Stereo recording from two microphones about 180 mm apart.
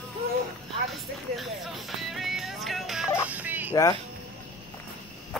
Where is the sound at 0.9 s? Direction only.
Centre (ahead or behind).